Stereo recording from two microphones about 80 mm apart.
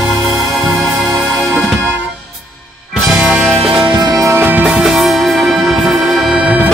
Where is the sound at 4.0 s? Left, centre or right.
Right.